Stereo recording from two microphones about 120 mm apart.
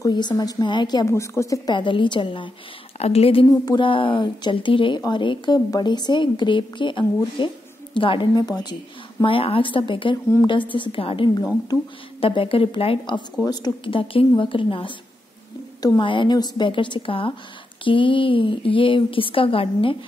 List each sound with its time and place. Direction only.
0.0 s a woman's voice: 35° left (ahead or behind)
1.0 s a woman's voice: 25° left (ahead or behind)
1.7 s a woman's voice: 40° left (ahead or behind)
3.0 s a woman's voice: 55° left (ahead or behind)
3.4 s a woman's voice: 30° left (ahead or behind)
3.8 s a woman's voice: 45° left (ahead or behind)
9.2 s a woman's voice: 50° left (ahead or behind)